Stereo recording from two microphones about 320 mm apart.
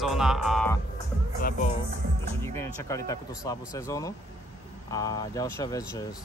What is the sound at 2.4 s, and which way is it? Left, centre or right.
Speech, centre.